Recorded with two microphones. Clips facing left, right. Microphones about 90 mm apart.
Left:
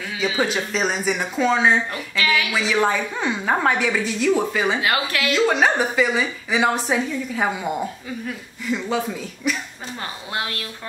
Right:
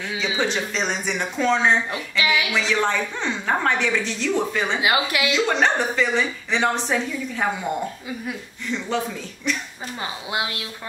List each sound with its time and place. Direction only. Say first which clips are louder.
0.0 s a woman's voice: left 2 dB; 5° left (ahead or behind)
1.9 s speech: even; 15° right (ahead or behind)
2.5 s a woman's voice: left 2 dB; 5° left (ahead or behind)
4.7 s speech: right 1 dB; 15° right (ahead or behind)
5.3 s a woman's voice: left 3 dB; 5° left (ahead or behind)
10.3 s speech: even; 15° right (ahead or behind)